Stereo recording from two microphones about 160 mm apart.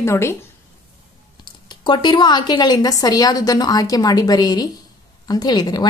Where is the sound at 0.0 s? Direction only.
15° left (ahead or behind).